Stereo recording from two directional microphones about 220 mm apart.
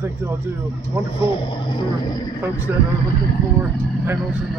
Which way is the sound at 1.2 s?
20° left (ahead or behind).